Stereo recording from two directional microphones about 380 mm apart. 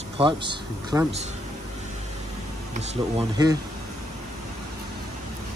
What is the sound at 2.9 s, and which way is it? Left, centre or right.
Speech, centre.